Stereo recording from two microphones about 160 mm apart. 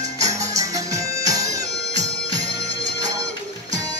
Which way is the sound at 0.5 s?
20° right (ahead or behind).